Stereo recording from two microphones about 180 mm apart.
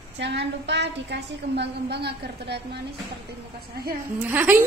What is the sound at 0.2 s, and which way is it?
A woman's voice, 75° right (ahead or behind).